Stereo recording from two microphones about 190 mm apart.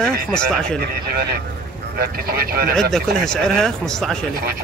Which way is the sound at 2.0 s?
50° right (ahead or behind).